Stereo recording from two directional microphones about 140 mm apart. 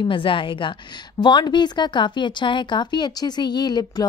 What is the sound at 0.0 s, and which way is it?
A woman's voice, 35° left (ahead or behind).